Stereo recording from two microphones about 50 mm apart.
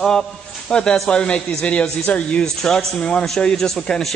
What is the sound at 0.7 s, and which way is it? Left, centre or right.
A man's voice, centre.